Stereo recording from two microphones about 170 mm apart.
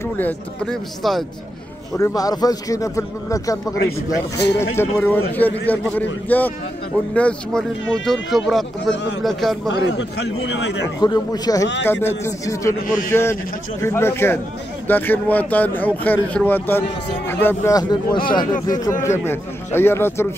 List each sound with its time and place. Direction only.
0.0 s speech: 10° left (ahead or behind)
2.0 s speech: 20° left (ahead or behind)
4.6 s speech: 15° left (ahead or behind)
9.8 s a man's voice: 80° left
11.0 s speech: 25° left (ahead or behind)
12.7 s a man's voice: 55° left (ahead or behind)
13.1 s speech: 15° left (ahead or behind)